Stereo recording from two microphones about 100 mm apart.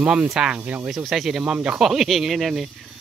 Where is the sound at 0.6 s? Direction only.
20° right (ahead or behind).